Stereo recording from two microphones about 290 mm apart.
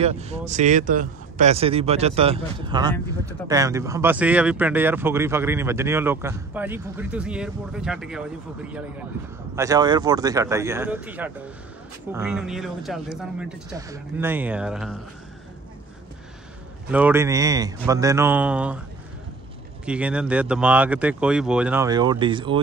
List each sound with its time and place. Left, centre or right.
0.0 s speech: right; by 8.2 s centre
9.6 s speech: centre
16.9 s speech: centre
19.8 s speech: centre